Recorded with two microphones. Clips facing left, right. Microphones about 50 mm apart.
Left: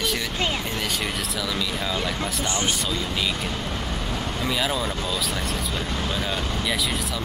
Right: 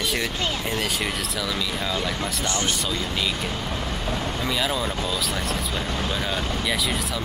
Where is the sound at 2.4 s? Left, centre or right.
Left.